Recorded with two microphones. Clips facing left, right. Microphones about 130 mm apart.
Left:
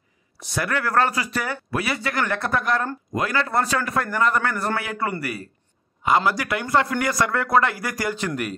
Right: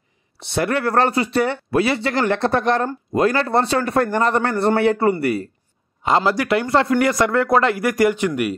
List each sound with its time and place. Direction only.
0.5 s a man's voice: 30° right (ahead or behind)